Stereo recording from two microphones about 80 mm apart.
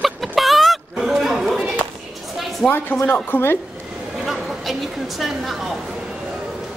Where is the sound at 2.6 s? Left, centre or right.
Centre.